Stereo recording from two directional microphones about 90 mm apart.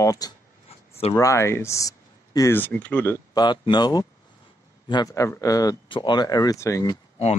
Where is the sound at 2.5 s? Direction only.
20° left (ahead or behind).